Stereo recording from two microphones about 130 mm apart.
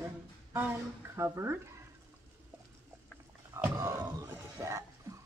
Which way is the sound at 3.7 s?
25° right (ahead or behind).